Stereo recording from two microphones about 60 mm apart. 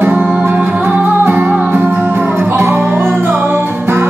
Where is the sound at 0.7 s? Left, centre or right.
Right.